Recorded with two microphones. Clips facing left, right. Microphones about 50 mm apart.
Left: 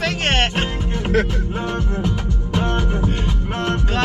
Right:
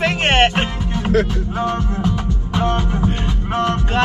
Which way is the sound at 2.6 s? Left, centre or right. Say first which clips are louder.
Right 2 dB; right.